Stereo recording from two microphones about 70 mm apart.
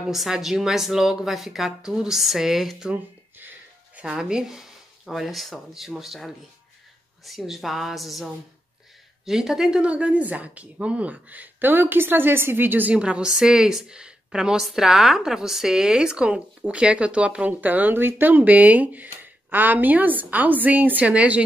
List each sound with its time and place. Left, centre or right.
0.1 s speech: centre
3.3 s a sound: right
4.0 s speech: centre; by 12.9 s right
12.9 s a woman's voice: centre